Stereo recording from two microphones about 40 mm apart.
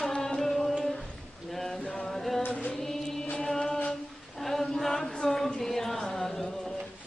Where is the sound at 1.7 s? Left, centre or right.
Centre.